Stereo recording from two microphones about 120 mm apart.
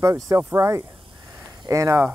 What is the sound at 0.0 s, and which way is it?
Speech, 25° right (ahead or behind).